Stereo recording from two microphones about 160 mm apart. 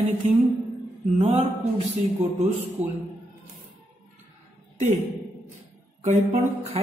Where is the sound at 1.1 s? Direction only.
45° right (ahead or behind).